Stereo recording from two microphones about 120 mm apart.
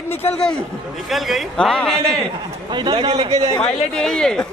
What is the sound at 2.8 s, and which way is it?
Speech, 40° right (ahead or behind).